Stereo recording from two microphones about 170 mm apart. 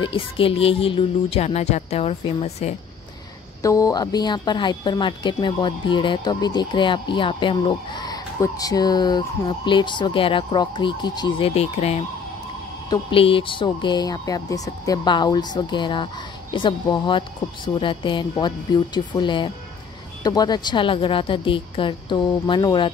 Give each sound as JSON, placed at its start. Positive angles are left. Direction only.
{"t": 0.0, "sound": "speech", "side_deg": 30}
{"t": 3.6, "sound": "a woman's voice", "side_deg": 20}